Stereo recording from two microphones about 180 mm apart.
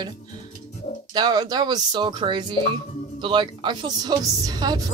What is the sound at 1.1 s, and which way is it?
Speech, 25° right (ahead or behind).